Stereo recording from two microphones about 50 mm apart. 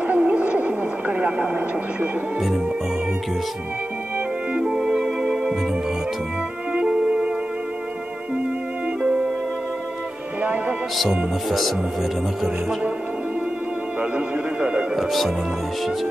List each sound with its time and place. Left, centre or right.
0.0 s a sound: right
4.7 s music: centre
6.7 s music: right
9.0 s music: right
14.1 s speech: right
15.0 s speech: centre